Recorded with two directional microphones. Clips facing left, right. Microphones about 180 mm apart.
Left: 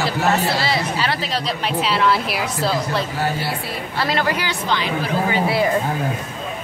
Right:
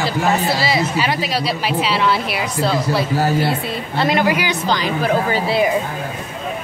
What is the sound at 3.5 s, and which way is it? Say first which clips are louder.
A woman's voice: right 4 dB; 20° right (ahead or behind).